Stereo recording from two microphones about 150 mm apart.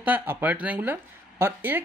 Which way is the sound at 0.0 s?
10° right (ahead or behind).